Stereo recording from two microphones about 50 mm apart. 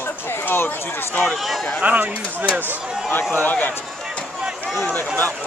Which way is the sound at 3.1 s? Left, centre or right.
Left.